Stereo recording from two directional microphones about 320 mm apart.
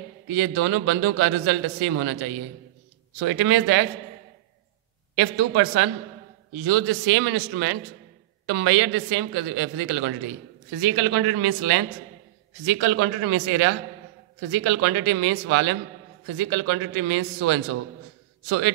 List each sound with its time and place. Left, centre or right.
0.4 s a man's voice: right
5.1 s a man's voice: right